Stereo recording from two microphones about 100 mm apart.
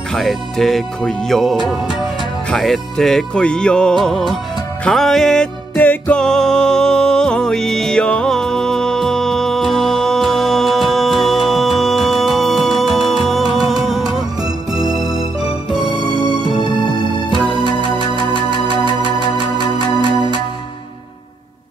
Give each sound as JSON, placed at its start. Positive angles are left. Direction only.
{"t": 0.1, "sound": "music", "side_deg": 0}
{"t": 5.8, "sound": "music", "side_deg": 15}
{"t": 14.8, "sound": "music", "side_deg": -40}